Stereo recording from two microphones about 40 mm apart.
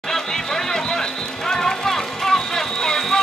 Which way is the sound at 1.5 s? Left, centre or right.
Centre.